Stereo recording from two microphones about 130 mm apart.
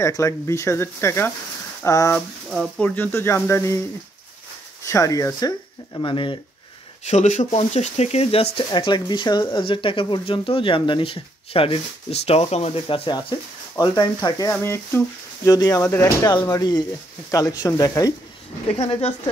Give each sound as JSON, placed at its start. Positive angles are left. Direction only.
{"t": 0.0, "sound": "speech", "side_deg": 25}
{"t": 4.8, "sound": "speech", "side_deg": 25}
{"t": 5.9, "sound": "speech", "side_deg": 40}
{"t": 7.1, "sound": "speech", "side_deg": 65}
{"t": 8.6, "sound": "speech", "side_deg": 35}
{"t": 12.8, "sound": "speech", "side_deg": 40}
{"t": 14.5, "sound": "speech", "side_deg": 20}
{"t": 16.3, "sound": "speech", "side_deg": 30}
{"t": 18.7, "sound": "speech", "side_deg": 55}